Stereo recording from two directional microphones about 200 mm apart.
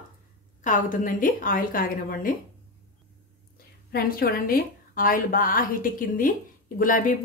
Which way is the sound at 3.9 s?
50° left (ahead or behind).